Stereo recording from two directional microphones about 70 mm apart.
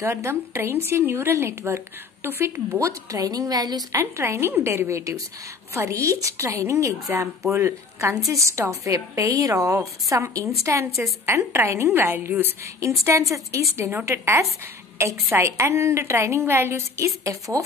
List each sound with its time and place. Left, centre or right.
0.0 s a woman's voice: right
2.8 s a woman's voice: right
3.9 s a woman's voice: right
13.3 s a woman's voice: right